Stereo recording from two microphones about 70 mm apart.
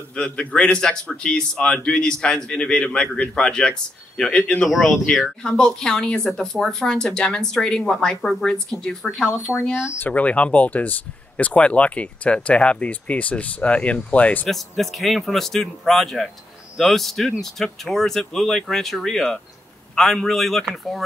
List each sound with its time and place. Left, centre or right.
0.1 s speech: centre
4.6 s speech: centre
9.8 s speech: left
14.5 s speech: centre